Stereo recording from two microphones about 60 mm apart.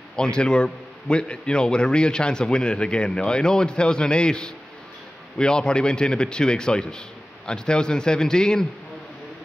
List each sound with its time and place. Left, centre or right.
0.1 s a man's voice: centre